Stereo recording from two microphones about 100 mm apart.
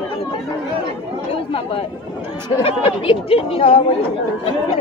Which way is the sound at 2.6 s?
70° left (ahead or behind).